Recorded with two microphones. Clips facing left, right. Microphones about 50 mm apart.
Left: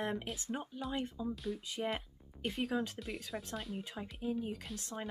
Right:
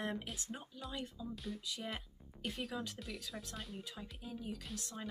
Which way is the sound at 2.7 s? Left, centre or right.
Left.